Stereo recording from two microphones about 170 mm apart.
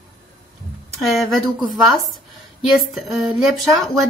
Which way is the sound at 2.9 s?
Centre (ahead or behind).